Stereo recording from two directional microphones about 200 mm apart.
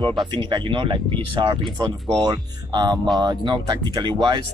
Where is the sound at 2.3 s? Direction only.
20° right (ahead or behind).